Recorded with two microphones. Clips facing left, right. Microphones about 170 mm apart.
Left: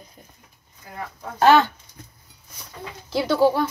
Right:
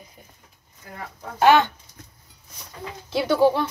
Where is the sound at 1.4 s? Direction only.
15° right (ahead or behind).